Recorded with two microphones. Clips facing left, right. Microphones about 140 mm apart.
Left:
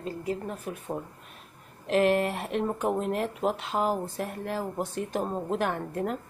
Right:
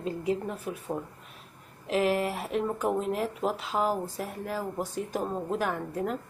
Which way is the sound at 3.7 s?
15° left (ahead or behind).